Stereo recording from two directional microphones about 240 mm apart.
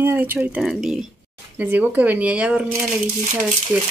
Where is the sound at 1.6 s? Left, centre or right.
Centre.